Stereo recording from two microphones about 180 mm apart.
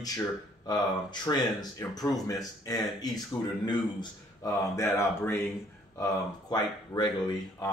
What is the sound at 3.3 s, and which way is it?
Speech, 5° left (ahead or behind).